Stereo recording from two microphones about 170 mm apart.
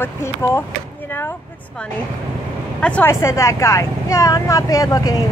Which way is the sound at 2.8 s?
10° left (ahead or behind).